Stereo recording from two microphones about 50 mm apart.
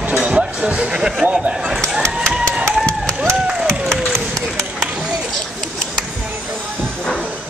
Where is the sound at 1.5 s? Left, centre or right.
Centre.